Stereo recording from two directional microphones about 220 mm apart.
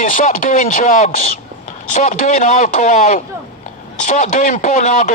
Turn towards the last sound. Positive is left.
turn(degrees=35)  # may be behind; listen again after turning